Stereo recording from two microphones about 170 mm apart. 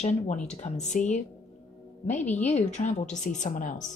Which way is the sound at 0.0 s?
40° left (ahead or behind).